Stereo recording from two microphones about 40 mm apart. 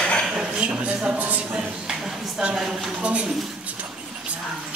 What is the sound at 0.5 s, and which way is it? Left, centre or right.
Speech, right.